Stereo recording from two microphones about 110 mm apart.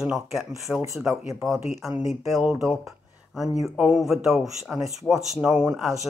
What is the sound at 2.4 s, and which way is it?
Speech, 10° right (ahead or behind).